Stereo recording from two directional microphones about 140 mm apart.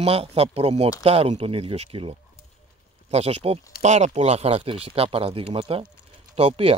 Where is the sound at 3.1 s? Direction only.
50° right (ahead or behind).